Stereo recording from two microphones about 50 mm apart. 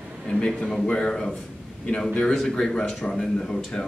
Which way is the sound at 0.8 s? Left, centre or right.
Centre.